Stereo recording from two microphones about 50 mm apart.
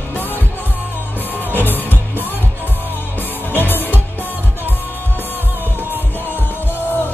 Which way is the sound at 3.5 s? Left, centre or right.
Left.